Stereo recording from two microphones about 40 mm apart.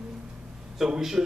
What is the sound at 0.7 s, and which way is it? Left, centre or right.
Speech, centre.